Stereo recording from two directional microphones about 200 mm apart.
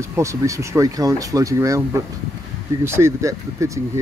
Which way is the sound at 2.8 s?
15° right (ahead or behind).